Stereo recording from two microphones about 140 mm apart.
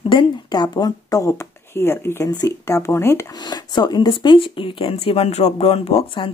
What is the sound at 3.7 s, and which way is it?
Speech, 30° left (ahead or behind).